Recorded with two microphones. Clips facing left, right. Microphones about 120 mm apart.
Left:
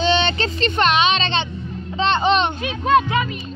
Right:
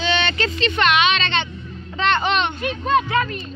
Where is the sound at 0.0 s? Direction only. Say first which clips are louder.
Left 3 dB; 30° left (ahead or behind).